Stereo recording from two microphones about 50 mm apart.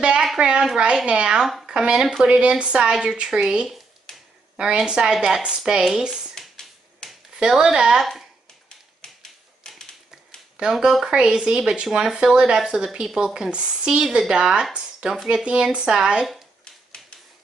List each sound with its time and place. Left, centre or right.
0.4 s a sound: centre
0.7 s a child's voice: centre
2.9 s speech: centre
4.1 s a sound: centre
4.6 s speech: centre
6.3 s a sound: centre
7.3 s speech: centre
8.0 s speech: centre
8.6 s typewriter: centre
10.6 s speech: centre
11.1 s speech: centre
17.0 s typewriter: centre